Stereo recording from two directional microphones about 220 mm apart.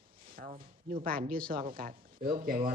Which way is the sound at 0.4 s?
40° right (ahead or behind).